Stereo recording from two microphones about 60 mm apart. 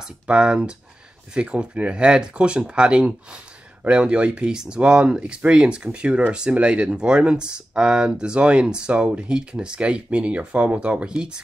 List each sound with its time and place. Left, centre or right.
0.0 s speech: centre